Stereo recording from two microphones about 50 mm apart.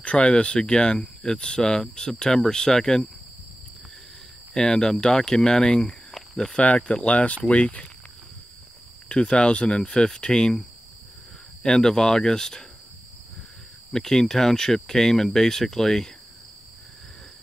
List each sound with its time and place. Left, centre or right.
0.0 s speech: left
4.6 s speech: centre
9.1 s speech: centre
11.6 s speech: centre
13.9 s speech: centre